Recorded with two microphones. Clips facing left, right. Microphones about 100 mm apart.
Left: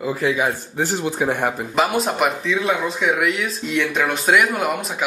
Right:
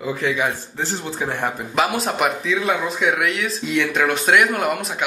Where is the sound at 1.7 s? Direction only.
Centre (ahead or behind).